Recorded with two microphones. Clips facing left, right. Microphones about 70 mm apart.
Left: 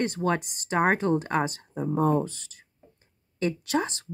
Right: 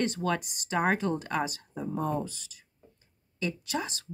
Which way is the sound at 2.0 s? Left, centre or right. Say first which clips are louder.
Left 8 dB; left.